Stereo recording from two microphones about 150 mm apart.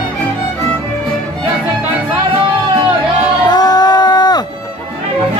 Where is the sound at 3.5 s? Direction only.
25° left (ahead or behind).